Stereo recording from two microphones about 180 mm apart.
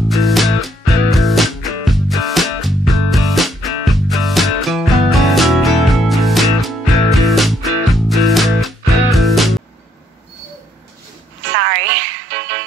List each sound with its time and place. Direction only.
0.1 s music: centre (ahead or behind)
11.5 s music: 90° right